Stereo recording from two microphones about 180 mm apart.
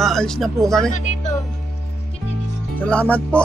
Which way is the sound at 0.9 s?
40° left (ahead or behind).